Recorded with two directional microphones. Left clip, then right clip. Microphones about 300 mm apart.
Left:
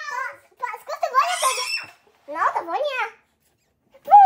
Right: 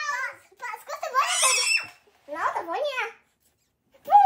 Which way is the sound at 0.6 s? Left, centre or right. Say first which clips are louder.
Left 7 dB; left.